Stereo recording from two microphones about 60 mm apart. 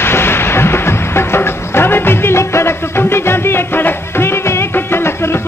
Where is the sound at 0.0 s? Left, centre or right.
Left.